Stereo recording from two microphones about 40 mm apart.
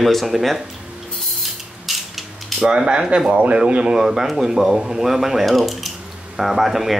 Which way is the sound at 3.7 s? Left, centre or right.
Right.